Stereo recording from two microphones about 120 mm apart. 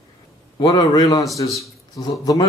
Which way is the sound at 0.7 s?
30° left (ahead or behind).